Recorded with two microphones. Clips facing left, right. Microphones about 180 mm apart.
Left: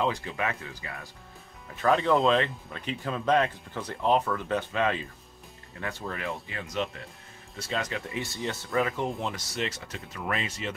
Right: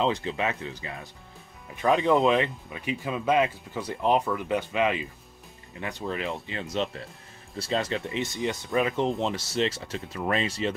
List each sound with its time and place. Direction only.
0.0 s speech: 25° right (ahead or behind)